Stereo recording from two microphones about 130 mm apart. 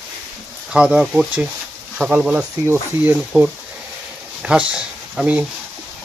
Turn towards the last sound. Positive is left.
turn(degrees=-10)  # may be behind; listen again after turning